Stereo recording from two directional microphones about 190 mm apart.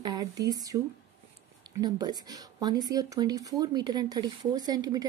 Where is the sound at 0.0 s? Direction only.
20° right (ahead or behind).